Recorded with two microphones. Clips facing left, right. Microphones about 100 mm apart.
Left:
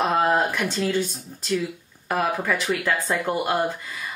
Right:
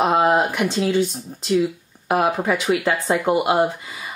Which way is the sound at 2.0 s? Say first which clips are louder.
Right 4 dB; 15° right (ahead or behind).